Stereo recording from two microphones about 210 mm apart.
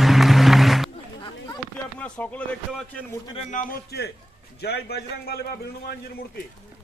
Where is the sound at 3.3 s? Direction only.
40° left (ahead or behind).